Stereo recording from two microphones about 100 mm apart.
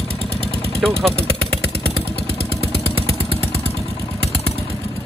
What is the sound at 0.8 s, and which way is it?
Speech, 5° left (ahead or behind).